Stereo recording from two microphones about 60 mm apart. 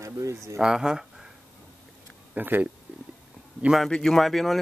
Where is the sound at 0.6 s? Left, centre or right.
Centre.